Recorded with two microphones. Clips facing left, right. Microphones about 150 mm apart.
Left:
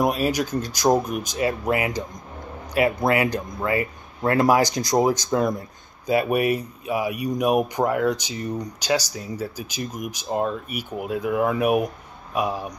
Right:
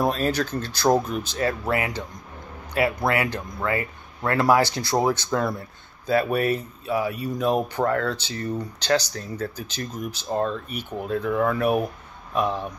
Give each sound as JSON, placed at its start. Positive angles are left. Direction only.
{"t": 0.0, "sound": "speech", "side_deg": 10}